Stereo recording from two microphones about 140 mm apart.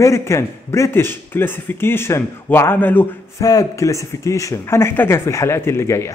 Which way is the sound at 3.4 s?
25° left (ahead or behind).